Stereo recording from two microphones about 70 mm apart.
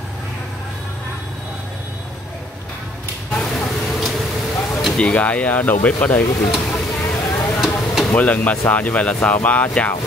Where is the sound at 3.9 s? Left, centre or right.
Centre.